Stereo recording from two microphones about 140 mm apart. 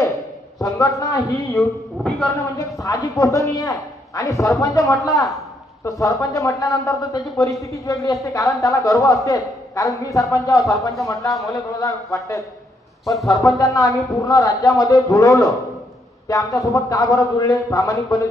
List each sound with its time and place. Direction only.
0.6 s speech: 25° left (ahead or behind)
13.0 s speech: centre (ahead or behind)
13.6 s speech: 25° left (ahead or behind)
15.3 s a man's voice: centre (ahead or behind)
16.3 s speech: 25° left (ahead or behind)